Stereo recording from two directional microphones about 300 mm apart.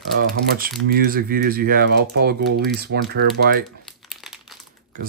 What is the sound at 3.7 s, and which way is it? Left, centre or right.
Crumpling, centre.